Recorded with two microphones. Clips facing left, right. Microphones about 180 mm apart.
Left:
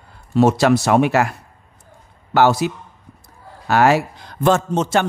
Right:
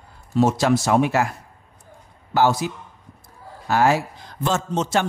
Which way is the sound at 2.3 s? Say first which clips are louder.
Left 4 dB; 70° left (ahead or behind).